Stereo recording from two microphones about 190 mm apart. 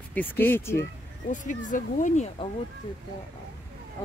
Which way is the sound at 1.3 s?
40° left (ahead or behind).